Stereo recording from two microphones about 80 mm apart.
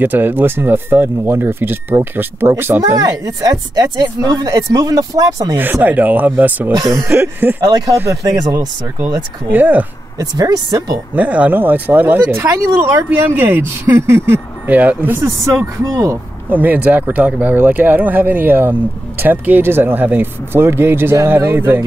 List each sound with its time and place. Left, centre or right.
0.0 s speech: right
3.0 s speech: right
5.6 s speech: right
6.7 s speech: right
7.2 s speech: right
7.7 s speech: right
8.4 s speech: right
9.5 s speech: right
10.1 s speech: right
11.1 s speech: centre
12.4 s speech: right
14.7 s speech: right
15.8 s speech: right
16.4 s speech: right